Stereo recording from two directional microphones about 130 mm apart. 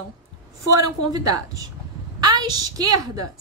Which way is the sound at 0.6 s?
25° right (ahead or behind).